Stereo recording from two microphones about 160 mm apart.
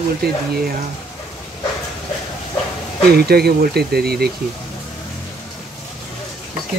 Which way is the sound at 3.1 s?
75° right (ahead or behind).